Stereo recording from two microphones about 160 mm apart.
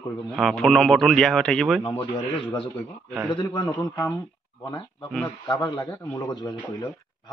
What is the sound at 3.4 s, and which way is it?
Speech, 20° left (ahead or behind).